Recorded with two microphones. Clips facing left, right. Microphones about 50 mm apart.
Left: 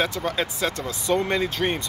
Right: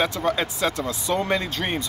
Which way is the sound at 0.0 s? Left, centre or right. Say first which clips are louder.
Right 2 dB; centre.